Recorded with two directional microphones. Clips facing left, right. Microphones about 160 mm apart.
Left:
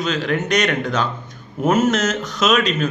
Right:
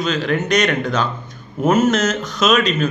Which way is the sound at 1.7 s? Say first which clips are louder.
Right 2 dB; 35° right (ahead or behind).